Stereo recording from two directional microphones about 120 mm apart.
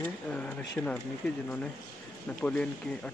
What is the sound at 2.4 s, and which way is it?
Speech, 10° left (ahead or behind).